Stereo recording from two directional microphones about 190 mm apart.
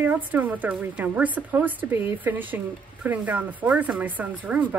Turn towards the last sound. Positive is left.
turn(degrees=-10)  # may be behind; listen again after turning